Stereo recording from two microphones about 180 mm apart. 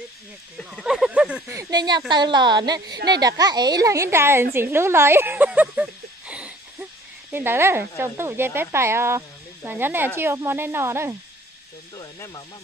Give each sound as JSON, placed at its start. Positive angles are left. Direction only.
{"t": 0.6, "sound": "speech", "side_deg": 0}
{"t": 1.6, "sound": "a woman's voice", "side_deg": -20}
{"t": 4.6, "sound": "a sound", "side_deg": -15}
{"t": 8.0, "sound": "speech", "side_deg": -15}
{"t": 12.0, "sound": "speech", "side_deg": 25}